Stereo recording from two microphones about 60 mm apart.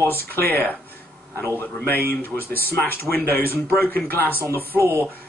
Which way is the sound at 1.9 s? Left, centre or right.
Left.